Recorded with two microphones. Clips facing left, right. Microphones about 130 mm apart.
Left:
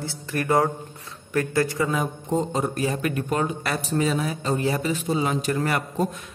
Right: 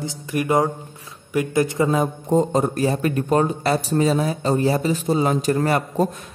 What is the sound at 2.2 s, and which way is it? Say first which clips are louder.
Speech: right 6 dB; 45° right (ahead or behind).